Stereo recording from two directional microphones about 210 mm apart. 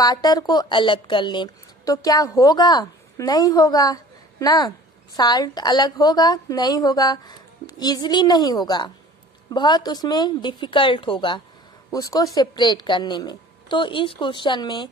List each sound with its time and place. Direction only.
0.0 s a woman's voice: 20° left (ahead or behind)